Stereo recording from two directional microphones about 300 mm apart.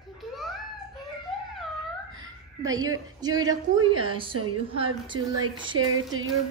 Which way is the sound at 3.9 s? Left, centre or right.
Right.